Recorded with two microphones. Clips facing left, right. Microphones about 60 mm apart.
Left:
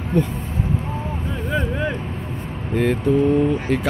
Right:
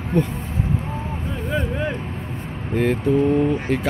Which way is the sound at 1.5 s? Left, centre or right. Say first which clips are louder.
Left 1 dB; centre.